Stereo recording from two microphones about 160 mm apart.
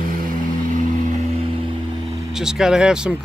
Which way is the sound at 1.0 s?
50° right (ahead or behind).